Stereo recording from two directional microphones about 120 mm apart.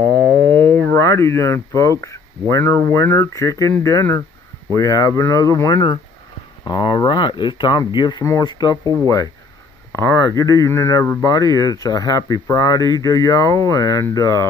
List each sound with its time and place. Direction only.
0.2 s a sound: 15° left (ahead or behind)
0.7 s speech: 20° left (ahead or behind); by 8.7 s 35° left (ahead or behind)
8.8 s speech: 35° right (ahead or behind)
9.9 s speech: 25° left (ahead or behind)